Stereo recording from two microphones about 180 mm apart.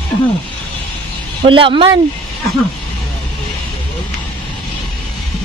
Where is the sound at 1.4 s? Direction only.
30° right (ahead or behind).